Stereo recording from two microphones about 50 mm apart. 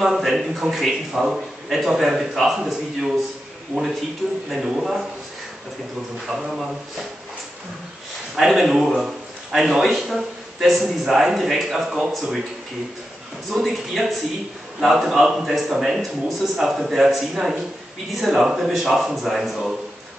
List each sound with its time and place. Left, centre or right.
0.0 s a man's voice: centre
3.7 s speech: right
4.5 s a man's voice: centre
6.2 s a man's voice: centre
8.4 s a man's voice: centre
13.5 s a man's voice: centre